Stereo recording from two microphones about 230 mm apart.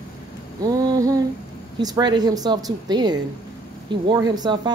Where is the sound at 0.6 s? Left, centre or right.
Centre.